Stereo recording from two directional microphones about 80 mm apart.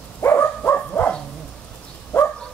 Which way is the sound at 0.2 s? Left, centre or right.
Left.